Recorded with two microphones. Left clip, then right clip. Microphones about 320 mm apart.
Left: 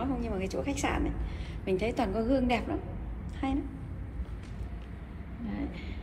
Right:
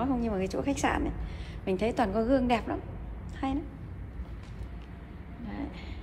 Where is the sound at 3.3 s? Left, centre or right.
Centre.